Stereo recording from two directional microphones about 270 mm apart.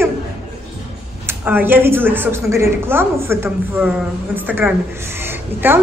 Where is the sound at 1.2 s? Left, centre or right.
Centre.